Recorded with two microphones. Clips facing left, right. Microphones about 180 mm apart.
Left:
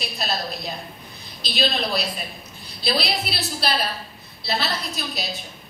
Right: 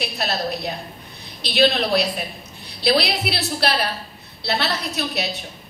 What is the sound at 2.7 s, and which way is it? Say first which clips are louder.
Speech: right 6 dB; 65° right (ahead or behind).